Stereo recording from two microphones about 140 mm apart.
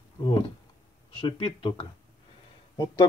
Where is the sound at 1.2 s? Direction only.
40° left (ahead or behind).